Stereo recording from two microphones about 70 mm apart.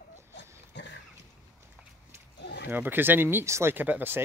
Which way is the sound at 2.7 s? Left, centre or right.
Right.